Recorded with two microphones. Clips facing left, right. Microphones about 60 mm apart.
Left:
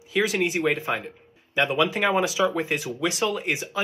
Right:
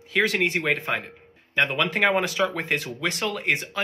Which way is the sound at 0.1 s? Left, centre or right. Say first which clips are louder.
Right 1 dB; right.